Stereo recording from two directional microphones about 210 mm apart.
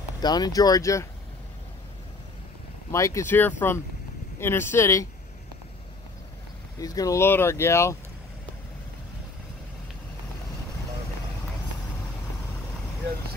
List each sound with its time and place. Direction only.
0.2 s speech: 20° left (ahead or behind)
2.9 s speech: 15° left (ahead or behind)
6.8 s speech: 15° left (ahead or behind)